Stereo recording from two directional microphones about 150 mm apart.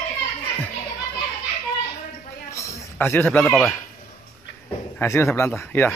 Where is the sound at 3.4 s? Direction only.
Centre (ahead or behind).